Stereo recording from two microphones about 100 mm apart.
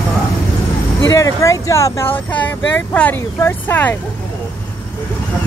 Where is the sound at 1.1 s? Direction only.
30° left (ahead or behind).